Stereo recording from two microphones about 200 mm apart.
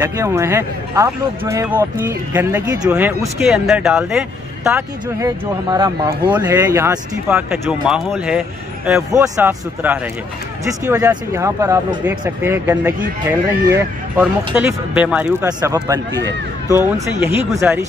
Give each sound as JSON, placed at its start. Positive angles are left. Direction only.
{"t": 0.0, "sound": "speech", "side_deg": -15}
{"t": 5.7, "sound": "speech", "side_deg": -20}
{"t": 9.1, "sound": "speech", "side_deg": -15}